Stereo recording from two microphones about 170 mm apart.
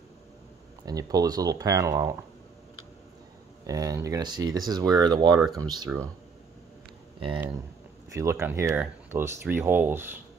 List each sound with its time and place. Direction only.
0.8 s speech: 20° right (ahead or behind)
3.6 s speech: 20° right (ahead or behind)
5.3 s speech: centre (ahead or behind)
5.6 s speech: 25° right (ahead or behind)
8.1 s speech: 15° right (ahead or behind)